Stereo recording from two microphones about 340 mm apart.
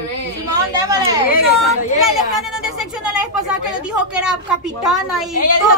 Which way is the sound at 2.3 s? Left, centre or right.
Centre.